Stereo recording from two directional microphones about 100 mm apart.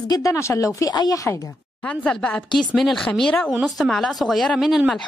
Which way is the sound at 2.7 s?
Centre (ahead or behind).